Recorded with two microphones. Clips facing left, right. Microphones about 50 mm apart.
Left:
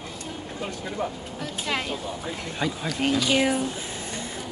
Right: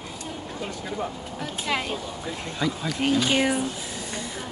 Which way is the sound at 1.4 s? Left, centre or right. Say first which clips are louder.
Right 1 dB; centre.